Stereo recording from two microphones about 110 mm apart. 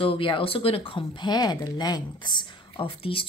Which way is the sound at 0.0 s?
55° left (ahead or behind).